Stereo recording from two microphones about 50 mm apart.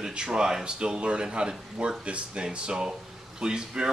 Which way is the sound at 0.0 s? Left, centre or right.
Centre.